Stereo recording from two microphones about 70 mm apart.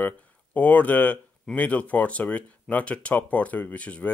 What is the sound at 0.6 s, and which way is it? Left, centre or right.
Speech, left.